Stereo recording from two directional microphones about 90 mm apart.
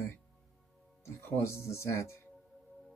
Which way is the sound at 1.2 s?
30° left (ahead or behind).